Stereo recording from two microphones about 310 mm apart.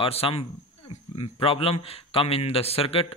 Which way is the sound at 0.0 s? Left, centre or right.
Centre.